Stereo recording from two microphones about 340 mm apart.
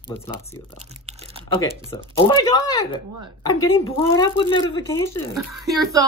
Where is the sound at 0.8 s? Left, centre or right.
Centre.